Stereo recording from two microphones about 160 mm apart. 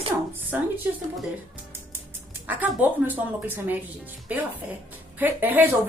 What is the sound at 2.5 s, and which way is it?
Speech, 10° right (ahead or behind).